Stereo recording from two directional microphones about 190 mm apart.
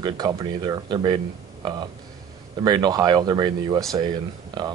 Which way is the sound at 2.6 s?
20° right (ahead or behind).